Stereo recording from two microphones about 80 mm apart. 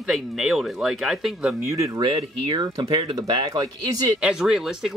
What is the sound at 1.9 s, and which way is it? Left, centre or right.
Speech, right.